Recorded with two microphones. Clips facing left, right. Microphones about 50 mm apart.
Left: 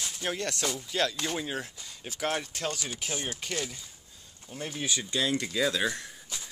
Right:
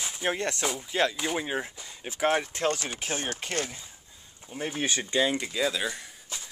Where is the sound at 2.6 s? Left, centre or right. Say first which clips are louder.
Right 5 dB; right.